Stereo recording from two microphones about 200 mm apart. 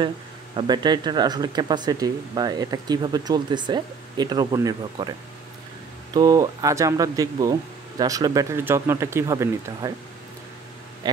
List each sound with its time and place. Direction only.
0.6 s speech: 20° right (ahead or behind)
6.1 s speech: 20° right (ahead or behind)